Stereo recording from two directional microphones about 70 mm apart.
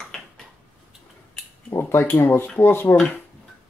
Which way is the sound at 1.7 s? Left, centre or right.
Left.